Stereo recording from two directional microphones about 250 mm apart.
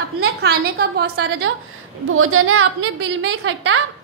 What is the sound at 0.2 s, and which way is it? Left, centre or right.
A woman's voice, right.